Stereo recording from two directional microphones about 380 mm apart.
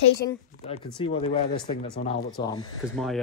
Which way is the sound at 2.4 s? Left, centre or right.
Centre.